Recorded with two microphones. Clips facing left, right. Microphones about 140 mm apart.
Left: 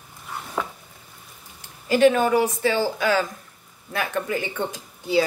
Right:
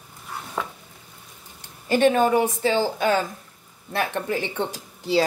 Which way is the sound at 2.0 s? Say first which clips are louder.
Left 1 dB; 40° right (ahead or behind).